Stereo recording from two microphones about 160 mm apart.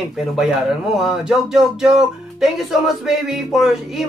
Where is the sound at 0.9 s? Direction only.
5° right (ahead or behind).